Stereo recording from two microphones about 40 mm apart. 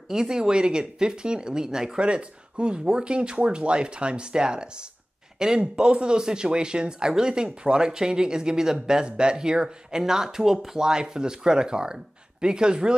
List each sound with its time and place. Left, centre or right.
0.1 s speech: centre